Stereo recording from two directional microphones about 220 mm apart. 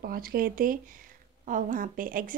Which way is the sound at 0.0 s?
40° right (ahead or behind).